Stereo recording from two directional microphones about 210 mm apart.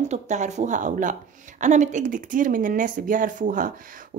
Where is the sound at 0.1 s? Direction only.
35° right (ahead or behind).